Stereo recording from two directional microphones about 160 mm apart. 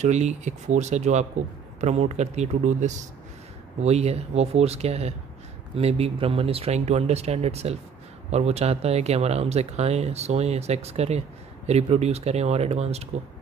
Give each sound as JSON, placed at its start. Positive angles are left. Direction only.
{"t": 0.0, "sound": "speech", "side_deg": -45}